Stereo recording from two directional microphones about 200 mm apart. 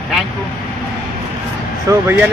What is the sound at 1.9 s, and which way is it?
Speech, 10° right (ahead or behind).